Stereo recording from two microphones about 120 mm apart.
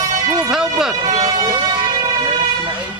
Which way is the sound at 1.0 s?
30° right (ahead or behind).